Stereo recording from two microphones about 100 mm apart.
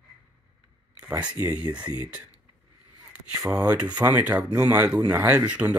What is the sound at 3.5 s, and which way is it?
Speech, 10° right (ahead or behind).